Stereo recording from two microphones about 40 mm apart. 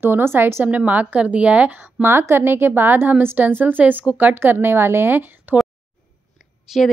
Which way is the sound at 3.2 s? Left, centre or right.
Right.